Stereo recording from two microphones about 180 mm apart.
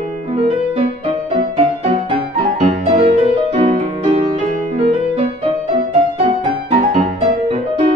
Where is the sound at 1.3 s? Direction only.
35° right (ahead or behind).